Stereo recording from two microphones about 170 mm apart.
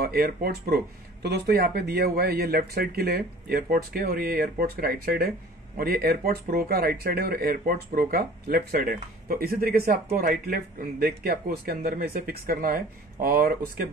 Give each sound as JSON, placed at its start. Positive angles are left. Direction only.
{"t": 0.0, "sound": "speech", "side_deg": -60}